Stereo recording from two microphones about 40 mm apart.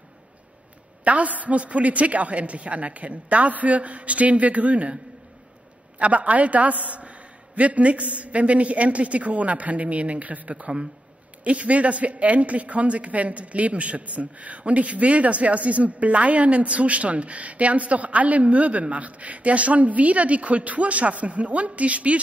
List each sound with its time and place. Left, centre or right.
1.0 s a man's voice: right
5.9 s a man's voice: right